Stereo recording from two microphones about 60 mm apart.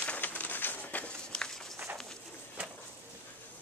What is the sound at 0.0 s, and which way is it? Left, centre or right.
Bird, left.